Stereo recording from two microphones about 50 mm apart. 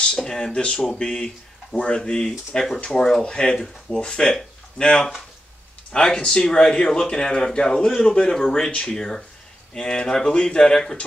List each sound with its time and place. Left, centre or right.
0.0 s speech: centre